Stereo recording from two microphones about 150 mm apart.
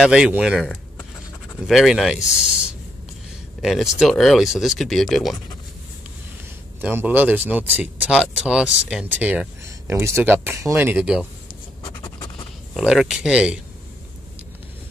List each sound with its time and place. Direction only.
0.0 s speech: 5° right (ahead or behind)
3.6 s speech: centre (ahead or behind)
6.8 s speech: 10° right (ahead or behind)
11.8 s writing: 30° left (ahead or behind)
12.7 s speech: 5° right (ahead or behind)